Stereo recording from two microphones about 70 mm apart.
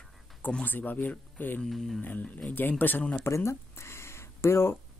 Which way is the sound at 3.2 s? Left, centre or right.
Left.